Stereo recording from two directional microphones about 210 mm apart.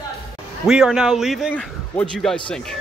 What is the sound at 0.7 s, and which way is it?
Speech, 5° right (ahead or behind).